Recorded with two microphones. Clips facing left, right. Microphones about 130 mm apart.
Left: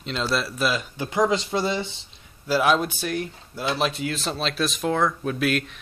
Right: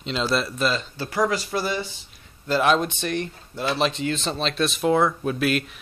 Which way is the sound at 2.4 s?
5° left (ahead or behind).